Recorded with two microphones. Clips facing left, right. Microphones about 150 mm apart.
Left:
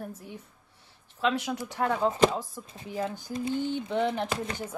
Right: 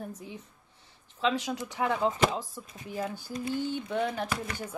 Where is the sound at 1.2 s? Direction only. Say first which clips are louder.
Left 1 dB; 10° left (ahead or behind).